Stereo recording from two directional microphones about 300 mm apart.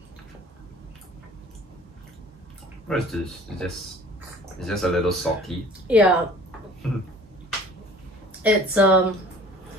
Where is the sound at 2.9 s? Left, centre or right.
Centre.